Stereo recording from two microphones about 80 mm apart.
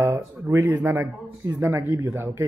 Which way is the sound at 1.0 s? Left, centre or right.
Right.